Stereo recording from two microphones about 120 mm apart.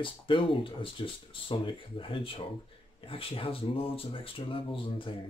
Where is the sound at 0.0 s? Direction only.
45° left (ahead or behind).